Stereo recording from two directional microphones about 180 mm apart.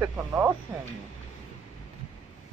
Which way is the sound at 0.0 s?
10° right (ahead or behind).